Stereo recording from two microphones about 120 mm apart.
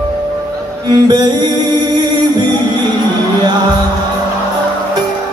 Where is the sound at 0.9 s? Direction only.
35° right (ahead or behind).